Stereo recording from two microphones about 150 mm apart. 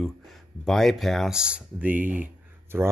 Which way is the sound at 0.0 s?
Centre (ahead or behind).